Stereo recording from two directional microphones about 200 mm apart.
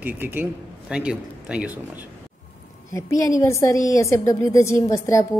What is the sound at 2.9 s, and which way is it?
A woman's voice, 15° left (ahead or behind).